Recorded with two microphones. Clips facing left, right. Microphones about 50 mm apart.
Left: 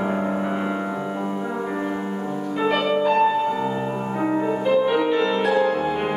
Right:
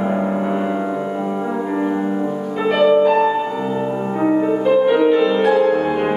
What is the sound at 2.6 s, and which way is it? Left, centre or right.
Music, centre.